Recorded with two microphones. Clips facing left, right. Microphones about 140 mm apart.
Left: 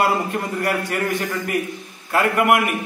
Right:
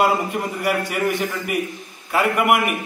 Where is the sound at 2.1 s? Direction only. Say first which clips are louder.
Left 1 dB; 5° right (ahead or behind).